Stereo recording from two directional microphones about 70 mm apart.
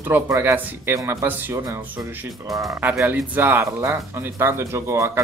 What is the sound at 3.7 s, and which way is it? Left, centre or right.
Speech, right.